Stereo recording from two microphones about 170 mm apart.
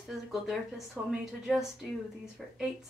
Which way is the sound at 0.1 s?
Centre (ahead or behind).